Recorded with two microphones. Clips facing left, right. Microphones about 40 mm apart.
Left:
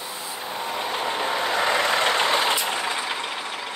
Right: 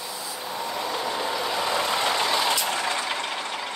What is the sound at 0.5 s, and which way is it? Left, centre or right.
Vehicle, left.